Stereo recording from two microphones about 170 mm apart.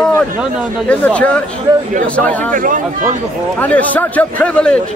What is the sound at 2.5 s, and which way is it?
Speech, 50° right (ahead or behind).